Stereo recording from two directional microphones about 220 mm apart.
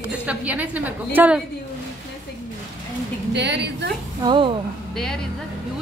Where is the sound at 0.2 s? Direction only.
5° right (ahead or behind).